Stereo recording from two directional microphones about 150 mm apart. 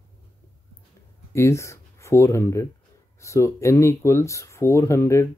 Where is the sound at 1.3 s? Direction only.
20° left (ahead or behind).